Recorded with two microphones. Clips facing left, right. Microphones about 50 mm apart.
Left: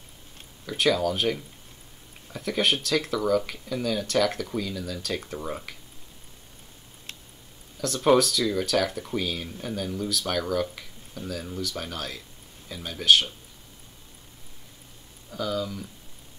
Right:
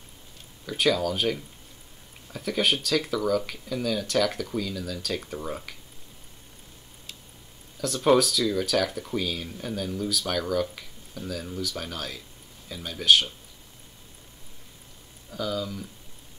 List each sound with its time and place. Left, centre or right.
0.7 s speech: centre
7.8 s speech: centre
15.3 s speech: centre